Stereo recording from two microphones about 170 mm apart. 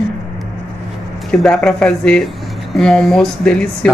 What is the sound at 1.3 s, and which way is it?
Speech, 5° left (ahead or behind).